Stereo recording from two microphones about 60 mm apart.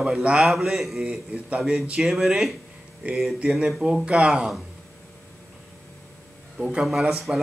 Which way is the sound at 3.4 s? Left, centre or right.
Centre.